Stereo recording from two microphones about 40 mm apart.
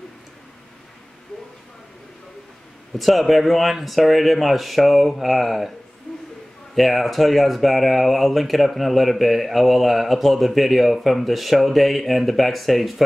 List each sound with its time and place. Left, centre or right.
3.0 s speech: centre
6.1 s a sound: left
6.7 s speech: centre